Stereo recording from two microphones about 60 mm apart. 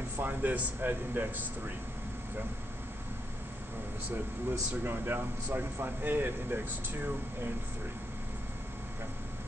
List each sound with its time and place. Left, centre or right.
0.2 s speech: right
4.1 s speech: right